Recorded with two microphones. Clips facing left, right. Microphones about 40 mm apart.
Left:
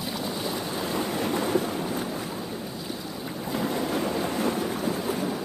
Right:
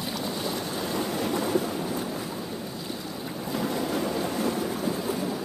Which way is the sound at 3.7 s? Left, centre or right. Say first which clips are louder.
Left 1 dB; left.